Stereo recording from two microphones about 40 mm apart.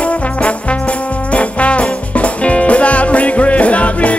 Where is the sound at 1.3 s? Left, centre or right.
Left.